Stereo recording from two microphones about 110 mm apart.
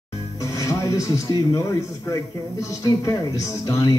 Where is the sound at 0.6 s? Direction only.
30° left (ahead or behind).